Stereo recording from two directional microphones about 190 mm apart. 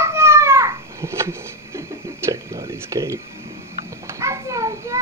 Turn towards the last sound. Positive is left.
turn(degrees=-15)  # may be behind; listen again after turning